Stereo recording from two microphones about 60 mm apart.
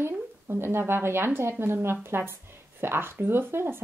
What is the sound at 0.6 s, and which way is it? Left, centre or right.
Speech, right.